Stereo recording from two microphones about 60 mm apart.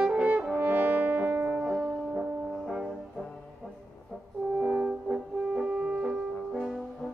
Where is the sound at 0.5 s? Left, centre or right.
Right.